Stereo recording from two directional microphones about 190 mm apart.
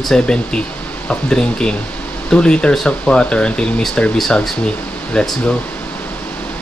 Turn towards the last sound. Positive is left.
turn(degrees=5)  # may be behind; listen again after turning